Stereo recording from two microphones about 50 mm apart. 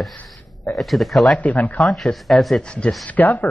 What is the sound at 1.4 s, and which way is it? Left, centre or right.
Speech, left.